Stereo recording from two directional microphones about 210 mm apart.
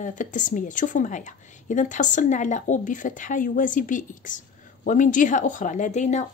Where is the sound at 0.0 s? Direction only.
35° left (ahead or behind).